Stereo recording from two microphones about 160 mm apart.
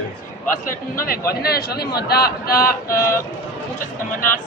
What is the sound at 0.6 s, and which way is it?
Speech, 65° left (ahead or behind).